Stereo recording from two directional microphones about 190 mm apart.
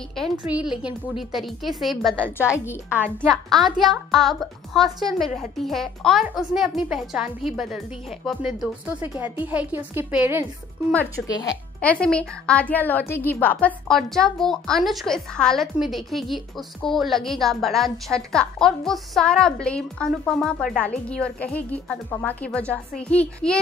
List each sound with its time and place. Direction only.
0.2 s a woman's voice: centre (ahead or behind)
2.5 s a woman's voice: 15° left (ahead or behind); by 10.4 s 10° right (ahead or behind)
11.1 s speech: 20° left (ahead or behind)
11.8 s a woman's voice: 5° left (ahead or behind)